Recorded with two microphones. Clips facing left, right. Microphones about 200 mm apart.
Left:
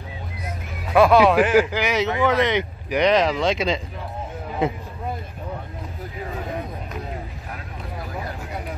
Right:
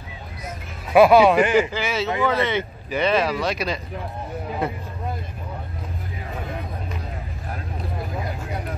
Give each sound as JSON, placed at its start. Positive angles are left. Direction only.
{"t": 0.9, "sound": "speech", "side_deg": -5}
{"t": 1.7, "sound": "speech", "side_deg": 15}